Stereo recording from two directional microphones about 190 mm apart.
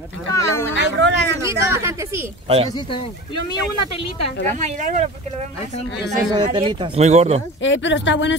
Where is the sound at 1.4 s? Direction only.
15° right (ahead or behind).